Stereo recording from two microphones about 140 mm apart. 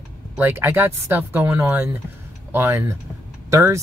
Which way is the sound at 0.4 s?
15° right (ahead or behind).